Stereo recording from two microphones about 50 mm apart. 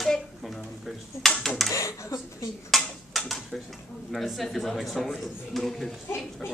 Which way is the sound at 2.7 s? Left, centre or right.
Centre.